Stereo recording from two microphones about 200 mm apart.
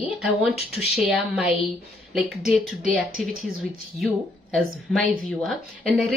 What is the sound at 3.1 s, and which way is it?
Speech, 45° right (ahead or behind).